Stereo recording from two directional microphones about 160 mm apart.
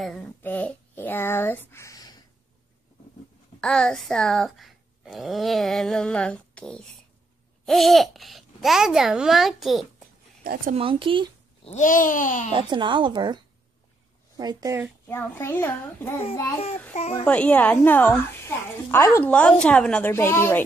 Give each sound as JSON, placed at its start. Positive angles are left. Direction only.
{"t": 0.4, "sound": "a sound", "side_deg": 10}
{"t": 3.6, "sound": "speech", "side_deg": 5}
{"t": 10.4, "sound": "speech", "side_deg": -65}
{"t": 10.7, "sound": "speech", "side_deg": -35}
{"t": 11.6, "sound": "babbling", "side_deg": 50}
{"t": 12.5, "sound": "a woman's voice", "side_deg": -30}
{"t": 15.0, "sound": "a woman's voice", "side_deg": 15}
{"t": 17.2, "sound": "a woman's voice", "side_deg": 10}